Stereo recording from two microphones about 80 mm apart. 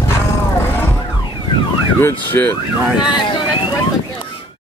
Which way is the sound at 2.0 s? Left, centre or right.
Left.